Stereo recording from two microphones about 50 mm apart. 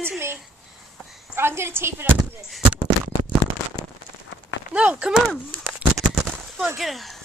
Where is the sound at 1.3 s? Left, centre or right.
Right.